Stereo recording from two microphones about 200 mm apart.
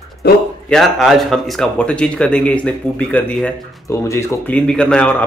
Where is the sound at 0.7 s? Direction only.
Centre (ahead or behind).